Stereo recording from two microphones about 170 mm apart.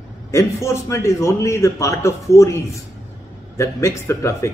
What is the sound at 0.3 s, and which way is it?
A man's voice, 15° left (ahead or behind).